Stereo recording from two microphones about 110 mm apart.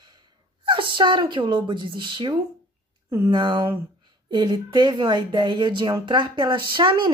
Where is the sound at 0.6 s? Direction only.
50° right (ahead or behind).